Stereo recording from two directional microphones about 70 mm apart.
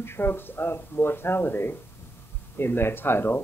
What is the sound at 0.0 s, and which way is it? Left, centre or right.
Speech, left.